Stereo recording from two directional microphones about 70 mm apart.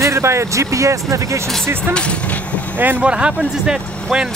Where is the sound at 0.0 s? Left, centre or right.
Right.